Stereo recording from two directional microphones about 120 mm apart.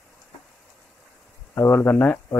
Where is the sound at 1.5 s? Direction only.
15° left (ahead or behind).